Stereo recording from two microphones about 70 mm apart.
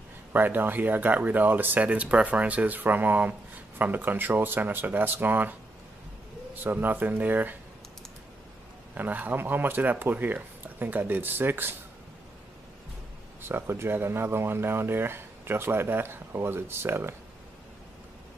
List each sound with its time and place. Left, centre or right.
0.3 s speech: right
8.9 s speech: right
13.4 s speech: right